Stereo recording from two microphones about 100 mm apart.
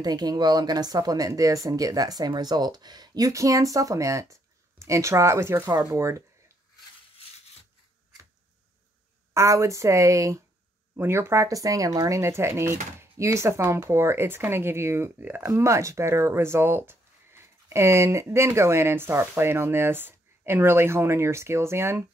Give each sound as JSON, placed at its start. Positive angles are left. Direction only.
{"t": 0.0, "sound": "speech", "side_deg": -45}
{"t": 9.3, "sound": "speech", "side_deg": -30}
{"t": 15.4, "sound": "speech", "side_deg": -30}